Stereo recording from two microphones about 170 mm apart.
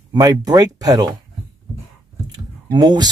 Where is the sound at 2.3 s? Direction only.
25° right (ahead or behind).